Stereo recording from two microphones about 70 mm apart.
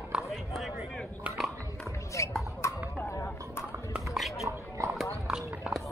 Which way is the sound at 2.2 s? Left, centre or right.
Left.